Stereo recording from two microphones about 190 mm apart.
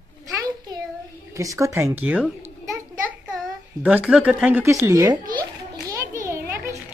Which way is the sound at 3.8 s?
5° right (ahead or behind).